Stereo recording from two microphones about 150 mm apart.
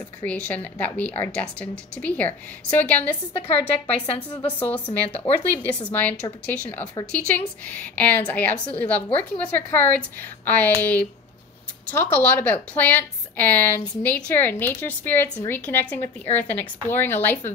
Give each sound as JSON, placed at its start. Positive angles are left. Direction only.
{"t": 0.2, "sound": "a woman's voice", "side_deg": 10}
{"t": 4.0, "sound": "a woman's voice", "side_deg": 35}
{"t": 4.6, "sound": "a woman's voice", "side_deg": 10}